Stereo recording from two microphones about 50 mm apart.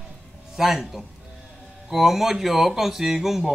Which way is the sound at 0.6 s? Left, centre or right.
Centre.